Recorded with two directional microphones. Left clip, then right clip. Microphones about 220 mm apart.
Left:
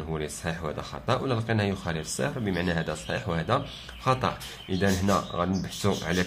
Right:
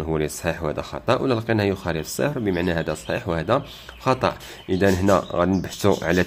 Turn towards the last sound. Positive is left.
turn(degrees=-35)  # may be behind; listen again after turning